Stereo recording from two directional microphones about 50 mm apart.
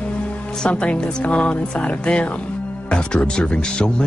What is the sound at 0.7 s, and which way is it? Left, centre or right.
Speech, left.